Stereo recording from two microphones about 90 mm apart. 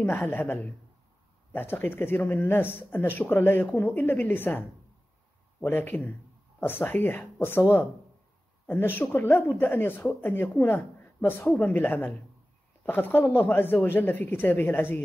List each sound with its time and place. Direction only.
0.0 s speech: 20° left (ahead or behind)